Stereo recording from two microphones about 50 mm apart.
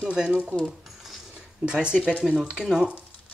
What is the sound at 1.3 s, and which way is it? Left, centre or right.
Speech, centre.